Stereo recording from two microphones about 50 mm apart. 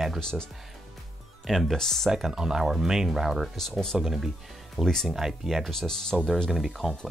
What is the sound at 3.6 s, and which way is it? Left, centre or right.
Speech, centre.